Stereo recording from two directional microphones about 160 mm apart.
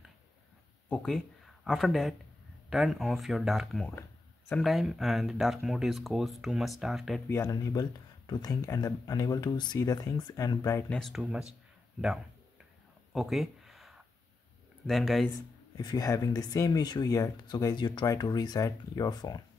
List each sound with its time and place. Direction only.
0.8 s speech: 5° left (ahead or behind)
7.2 s speech: 20° left (ahead or behind)
10.9 s speech: centre (ahead or behind)
13.1 s a sound: centre (ahead or behind)
14.9 s speech: centre (ahead or behind)
15.8 s speech: 25° left (ahead or behind)